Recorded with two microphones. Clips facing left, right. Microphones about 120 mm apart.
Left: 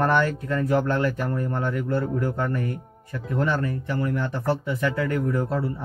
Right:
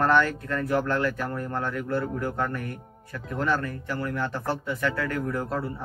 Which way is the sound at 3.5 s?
20° left (ahead or behind).